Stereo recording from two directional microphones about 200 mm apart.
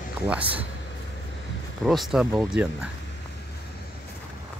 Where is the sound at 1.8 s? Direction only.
Centre (ahead or behind).